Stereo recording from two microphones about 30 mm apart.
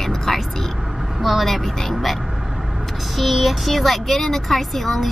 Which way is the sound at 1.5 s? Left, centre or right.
Centre.